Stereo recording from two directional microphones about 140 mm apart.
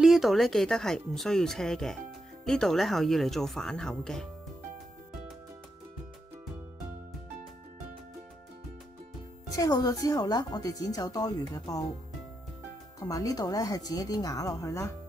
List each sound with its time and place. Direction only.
0.0 s speech: centre (ahead or behind)
9.6 s speech: 25° left (ahead or behind)
13.0 s speech: 25° left (ahead or behind)